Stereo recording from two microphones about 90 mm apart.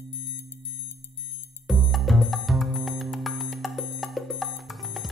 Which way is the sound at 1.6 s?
Centre (ahead or behind).